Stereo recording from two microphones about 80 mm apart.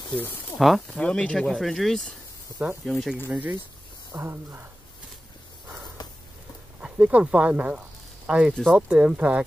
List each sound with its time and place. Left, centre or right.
0.6 s speech: centre
0.8 s speech: centre
3.3 s speech: centre
4.2 s speech: right
6.8 s speech: centre